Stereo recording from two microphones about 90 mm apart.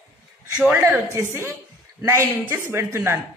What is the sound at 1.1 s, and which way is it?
A woman's voice, 30° right (ahead or behind).